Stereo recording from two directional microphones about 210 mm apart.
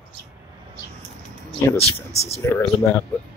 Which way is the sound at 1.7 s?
30° left (ahead or behind).